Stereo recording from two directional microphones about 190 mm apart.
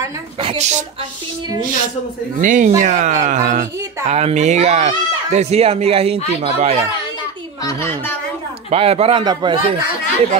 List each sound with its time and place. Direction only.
0.4 s speech: 30° right (ahead or behind)
2.4 s speech: 40° right (ahead or behind)
7.6 s a woman's voice: 15° left (ahead or behind)
8.6 s a man's voice: 30° right (ahead or behind)